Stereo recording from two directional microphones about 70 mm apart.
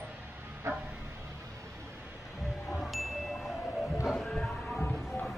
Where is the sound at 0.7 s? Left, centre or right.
Right.